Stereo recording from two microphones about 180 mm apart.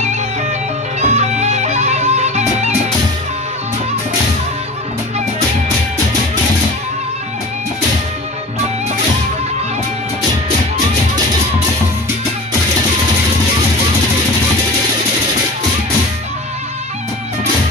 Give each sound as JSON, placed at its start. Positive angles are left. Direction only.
{"t": 1.0, "sound": "music", "side_deg": -40}